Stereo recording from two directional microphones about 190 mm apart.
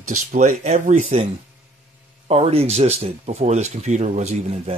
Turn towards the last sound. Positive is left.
turn(degrees=-35)  # may be behind; listen again after turning